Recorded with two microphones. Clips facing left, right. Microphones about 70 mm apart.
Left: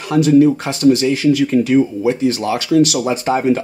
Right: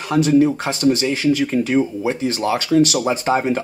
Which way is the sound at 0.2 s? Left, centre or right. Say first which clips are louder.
Left 4 dB; centre.